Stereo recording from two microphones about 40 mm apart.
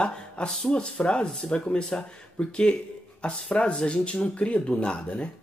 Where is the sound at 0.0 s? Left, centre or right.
Left.